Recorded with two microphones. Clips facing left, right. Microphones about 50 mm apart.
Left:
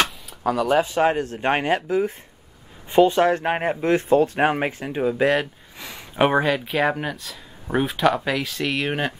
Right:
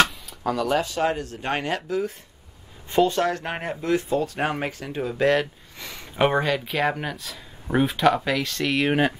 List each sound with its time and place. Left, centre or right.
0.3 s speech: centre; by 5.0 s left
5.0 s speech: centre